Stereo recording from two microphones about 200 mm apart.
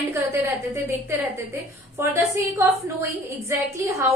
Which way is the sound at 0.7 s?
10° right (ahead or behind).